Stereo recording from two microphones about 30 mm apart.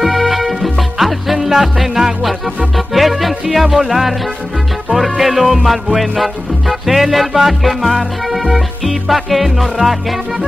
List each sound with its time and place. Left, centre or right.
0.0 s music: centre
2.0 s music: right
2.9 s music: centre
5.2 s music: centre